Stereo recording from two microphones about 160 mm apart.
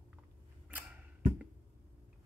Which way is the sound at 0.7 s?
10° right (ahead or behind).